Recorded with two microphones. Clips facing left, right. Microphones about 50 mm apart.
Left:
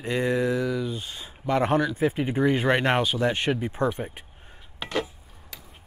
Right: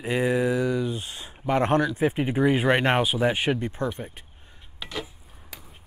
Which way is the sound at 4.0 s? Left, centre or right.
Centre.